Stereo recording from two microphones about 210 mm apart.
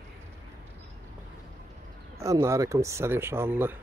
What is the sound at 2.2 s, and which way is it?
Speech, 15° right (ahead or behind).